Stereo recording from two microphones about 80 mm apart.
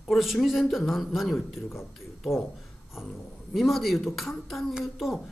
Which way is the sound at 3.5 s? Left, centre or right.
Centre.